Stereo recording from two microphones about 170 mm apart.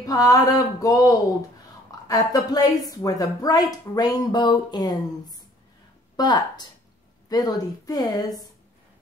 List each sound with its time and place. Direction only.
0.0 s a woman's voice: 20° left (ahead or behind)